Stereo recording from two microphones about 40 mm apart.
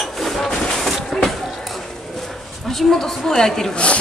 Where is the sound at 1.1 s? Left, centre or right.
Centre.